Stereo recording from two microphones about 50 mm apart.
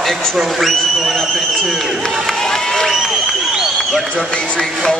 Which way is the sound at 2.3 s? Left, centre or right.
Centre.